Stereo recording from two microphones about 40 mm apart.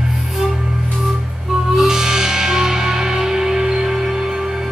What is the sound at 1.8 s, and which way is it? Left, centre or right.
Music, centre.